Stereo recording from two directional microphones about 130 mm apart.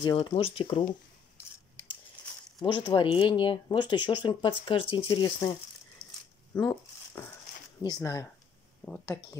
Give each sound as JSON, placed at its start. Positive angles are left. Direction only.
{"t": 0.0, "sound": "speech", "side_deg": 40}
{"t": 2.6, "sound": "speech", "side_deg": 35}
{"t": 6.0, "sound": "a sound", "side_deg": 5}
{"t": 6.5, "sound": "speech", "side_deg": 20}
{"t": 7.8, "sound": "speech", "side_deg": 30}
{"t": 8.8, "sound": "speech", "side_deg": 10}